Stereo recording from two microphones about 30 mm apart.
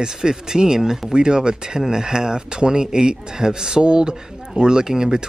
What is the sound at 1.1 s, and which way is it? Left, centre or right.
Speech, right.